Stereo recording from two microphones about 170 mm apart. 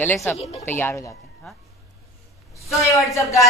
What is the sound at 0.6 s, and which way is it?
Speech, 15° left (ahead or behind).